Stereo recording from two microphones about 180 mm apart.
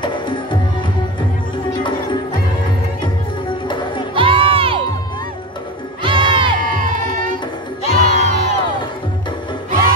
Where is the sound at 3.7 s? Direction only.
25° left (ahead or behind).